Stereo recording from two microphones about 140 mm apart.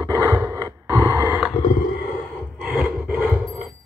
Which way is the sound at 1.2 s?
15° right (ahead or behind).